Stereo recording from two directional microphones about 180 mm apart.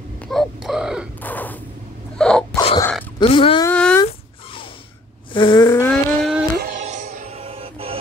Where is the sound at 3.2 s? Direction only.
30° left (ahead or behind).